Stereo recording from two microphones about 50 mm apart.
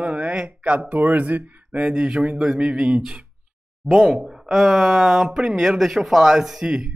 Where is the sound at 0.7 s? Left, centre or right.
Right.